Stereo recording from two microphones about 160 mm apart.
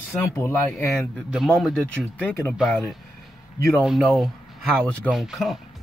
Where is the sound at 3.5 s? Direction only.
20° left (ahead or behind).